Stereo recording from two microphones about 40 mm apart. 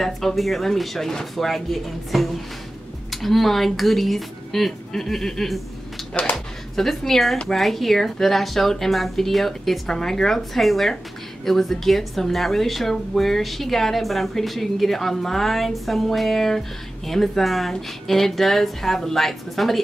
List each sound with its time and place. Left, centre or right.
0.0 s a woman's voice: centre
6.1 s a sound: left
6.7 s a woman's voice: centre